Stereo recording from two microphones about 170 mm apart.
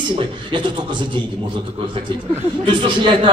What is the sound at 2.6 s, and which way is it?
Speech, 30° right (ahead or behind).